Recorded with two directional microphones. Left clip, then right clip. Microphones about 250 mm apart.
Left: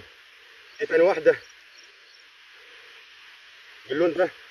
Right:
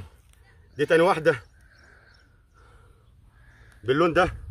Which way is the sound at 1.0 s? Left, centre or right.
Right.